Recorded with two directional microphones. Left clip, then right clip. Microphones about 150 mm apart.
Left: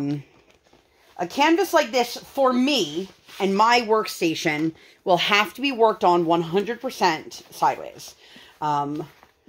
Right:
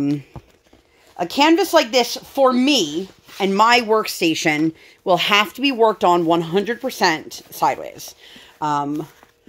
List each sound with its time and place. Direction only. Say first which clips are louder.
1.1 s speech: right 4 dB; 60° right (ahead or behind)